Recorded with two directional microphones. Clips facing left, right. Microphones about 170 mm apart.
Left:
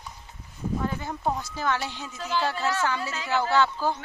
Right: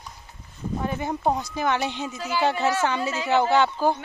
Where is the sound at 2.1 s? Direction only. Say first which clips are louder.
Left 1 dB; 5° right (ahead or behind).